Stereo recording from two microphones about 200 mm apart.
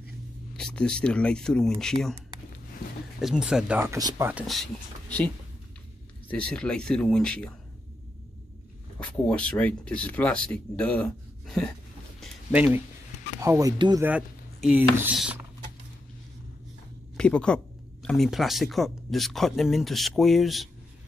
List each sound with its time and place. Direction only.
0.6 s speech: 5° left (ahead or behind)
3.2 s speech: centre (ahead or behind)
6.2 s speech: 5° left (ahead or behind)
9.0 s speech: 5° left (ahead or behind)
12.2 s a sound: 5° right (ahead or behind)
13.4 s speech: 15° right (ahead or behind)
14.0 s speech: 5° right (ahead or behind)
17.2 s speech: 5° left (ahead or behind)